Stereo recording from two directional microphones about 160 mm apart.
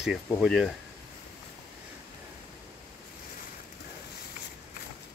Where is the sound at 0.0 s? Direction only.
5° right (ahead or behind).